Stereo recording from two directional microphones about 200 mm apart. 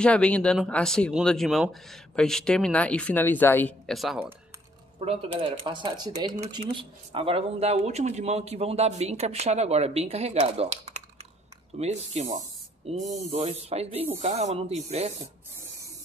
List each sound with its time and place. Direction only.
0.0 s speech: 5° left (ahead or behind)
5.0 s speech: 30° right (ahead or behind)